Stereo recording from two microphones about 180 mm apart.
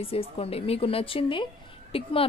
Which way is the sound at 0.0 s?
30° left (ahead or behind).